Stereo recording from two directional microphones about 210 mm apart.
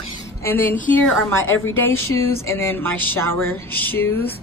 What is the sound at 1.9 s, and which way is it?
Speech, 85° left.